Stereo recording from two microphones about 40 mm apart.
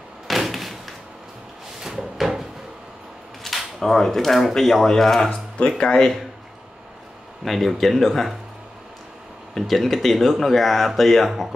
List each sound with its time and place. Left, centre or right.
0.3 s door: centre
1.8 s drawer open or close: centre
3.4 s speech: centre
7.4 s speech: centre
9.5 s speech: centre